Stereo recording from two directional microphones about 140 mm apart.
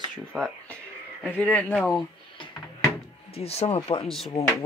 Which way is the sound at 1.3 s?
10° left (ahead or behind).